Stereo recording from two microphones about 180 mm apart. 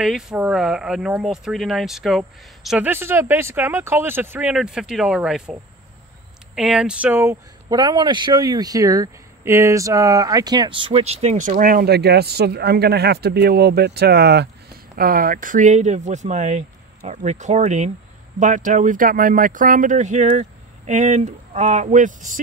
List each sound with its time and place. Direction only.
0.0 s speech: 5° right (ahead or behind); by 14.5 s 65° right (ahead or behind)
15.0 s speech: 55° right (ahead or behind)